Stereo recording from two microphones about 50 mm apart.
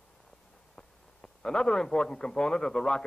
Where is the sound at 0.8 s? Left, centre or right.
Centre.